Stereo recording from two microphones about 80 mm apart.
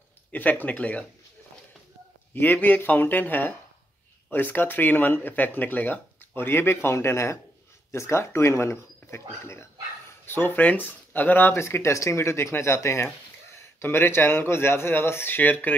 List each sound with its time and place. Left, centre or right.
0.3 s speech: centre
2.3 s speech: left